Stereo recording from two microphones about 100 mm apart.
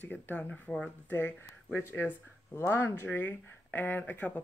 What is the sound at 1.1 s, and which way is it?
Speech, 15° left (ahead or behind).